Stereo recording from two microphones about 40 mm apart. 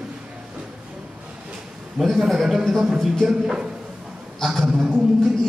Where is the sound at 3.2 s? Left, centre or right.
Centre.